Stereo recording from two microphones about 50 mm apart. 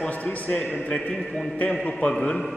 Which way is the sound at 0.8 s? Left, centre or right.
Left.